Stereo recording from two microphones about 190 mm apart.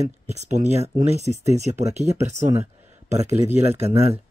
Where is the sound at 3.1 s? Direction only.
35° right (ahead or behind).